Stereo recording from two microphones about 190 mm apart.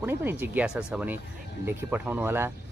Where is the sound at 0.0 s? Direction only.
10° right (ahead or behind).